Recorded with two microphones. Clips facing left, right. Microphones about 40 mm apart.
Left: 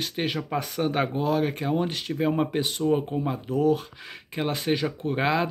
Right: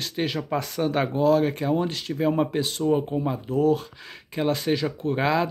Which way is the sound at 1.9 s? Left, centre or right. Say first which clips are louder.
Right 1 dB; left.